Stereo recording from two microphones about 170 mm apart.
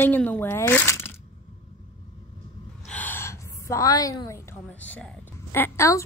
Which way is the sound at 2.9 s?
10° left (ahead or behind).